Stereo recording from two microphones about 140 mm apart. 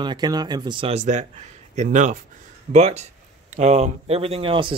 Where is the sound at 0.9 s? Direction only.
55° right (ahead or behind).